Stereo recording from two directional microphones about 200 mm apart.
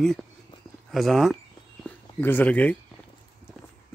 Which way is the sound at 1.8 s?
10° left (ahead or behind).